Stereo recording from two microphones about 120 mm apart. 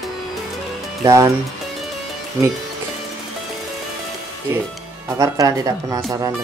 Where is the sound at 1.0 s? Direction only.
25° right (ahead or behind).